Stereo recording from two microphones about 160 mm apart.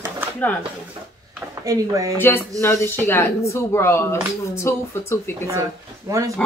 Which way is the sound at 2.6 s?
15° left (ahead or behind).